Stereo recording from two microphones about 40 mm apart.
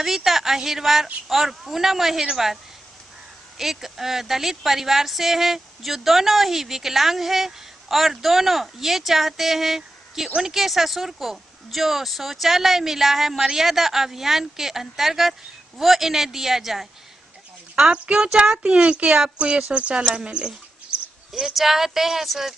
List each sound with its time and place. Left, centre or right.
0.0 s a woman's voice: centre
17.9 s speech: right
19.1 s a woman's voice: centre
19.4 s speech: right
21.5 s a woman's voice: centre